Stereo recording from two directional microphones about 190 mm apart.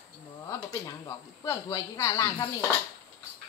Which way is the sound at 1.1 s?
15° left (ahead or behind).